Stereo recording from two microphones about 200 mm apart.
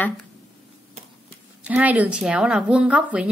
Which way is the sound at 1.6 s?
5° right (ahead or behind).